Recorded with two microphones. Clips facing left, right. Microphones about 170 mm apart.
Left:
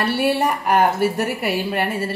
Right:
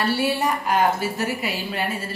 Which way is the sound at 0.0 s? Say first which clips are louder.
Left 3 dB; 60° left (ahead or behind).